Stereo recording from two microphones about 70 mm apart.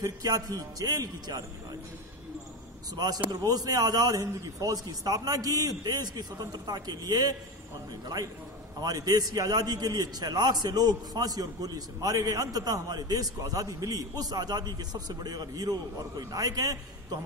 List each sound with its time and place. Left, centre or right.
0.0 s a man's voice: right
3.0 s a man's voice: right
8.8 s a man's voice: right